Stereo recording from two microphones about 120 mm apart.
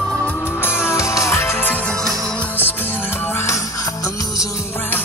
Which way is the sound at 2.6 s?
15° left (ahead or behind).